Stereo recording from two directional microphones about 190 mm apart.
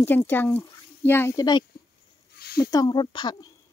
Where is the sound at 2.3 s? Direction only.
55° left (ahead or behind).